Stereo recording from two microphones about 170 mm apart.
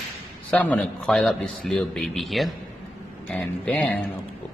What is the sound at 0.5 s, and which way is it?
A man's voice, 10° left (ahead or behind).